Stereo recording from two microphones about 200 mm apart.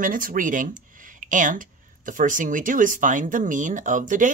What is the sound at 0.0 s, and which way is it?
Speech, 45° right (ahead or behind).